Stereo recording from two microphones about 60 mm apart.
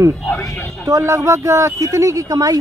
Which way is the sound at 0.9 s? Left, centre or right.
Right.